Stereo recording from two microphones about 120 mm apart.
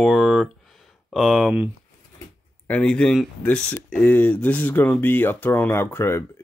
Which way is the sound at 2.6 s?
10° left (ahead or behind).